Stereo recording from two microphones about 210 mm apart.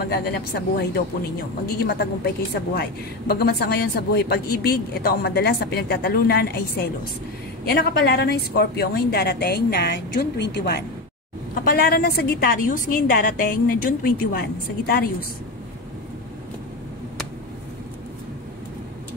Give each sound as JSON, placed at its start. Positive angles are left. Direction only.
{"t": 0.1, "sound": "a woman's voice", "side_deg": 50}